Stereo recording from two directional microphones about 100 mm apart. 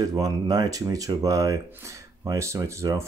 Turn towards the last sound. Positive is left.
turn(degrees=-30)  # may be behind; listen again after turning